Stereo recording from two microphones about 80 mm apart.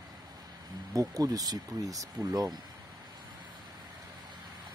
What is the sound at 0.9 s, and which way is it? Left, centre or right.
Speech, right.